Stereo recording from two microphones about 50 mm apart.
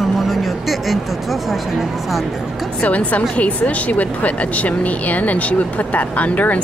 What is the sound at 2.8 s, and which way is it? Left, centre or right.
Speech, left.